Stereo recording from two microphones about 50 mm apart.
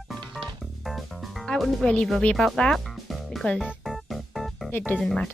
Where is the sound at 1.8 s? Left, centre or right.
Centre.